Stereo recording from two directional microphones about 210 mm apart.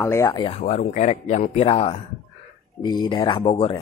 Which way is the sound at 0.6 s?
35° left (ahead or behind).